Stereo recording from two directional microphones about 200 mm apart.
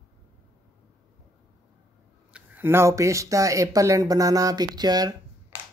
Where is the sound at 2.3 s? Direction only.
10° right (ahead or behind).